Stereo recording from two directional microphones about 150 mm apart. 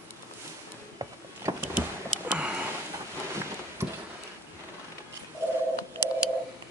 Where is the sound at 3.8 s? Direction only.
20° right (ahead or behind).